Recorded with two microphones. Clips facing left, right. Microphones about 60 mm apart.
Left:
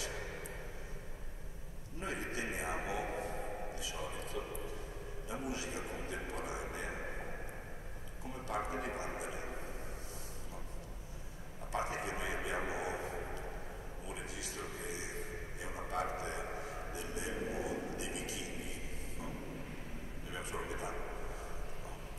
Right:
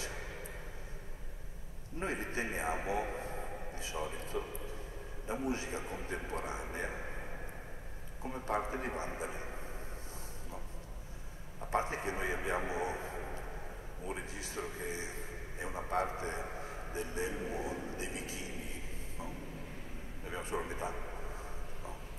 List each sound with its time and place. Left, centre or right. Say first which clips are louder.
2.0 s a man's voice: right 3 dB; right
8.2 s a man's voice: right 4 dB; right
11.7 s a man's voice: right 3 dB; right
20.2 s a man's voice: right 4 dB; right